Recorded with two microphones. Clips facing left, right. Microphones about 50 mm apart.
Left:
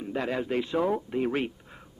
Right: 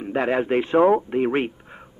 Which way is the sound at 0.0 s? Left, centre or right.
Right.